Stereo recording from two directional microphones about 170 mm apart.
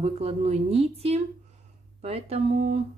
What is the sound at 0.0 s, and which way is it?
A woman's voice, 35° right (ahead or behind).